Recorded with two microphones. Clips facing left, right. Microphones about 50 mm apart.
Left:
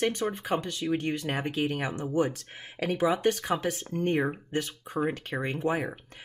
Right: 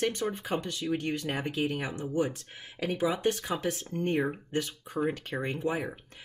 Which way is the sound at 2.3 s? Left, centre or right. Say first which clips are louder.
Left 2 dB; left.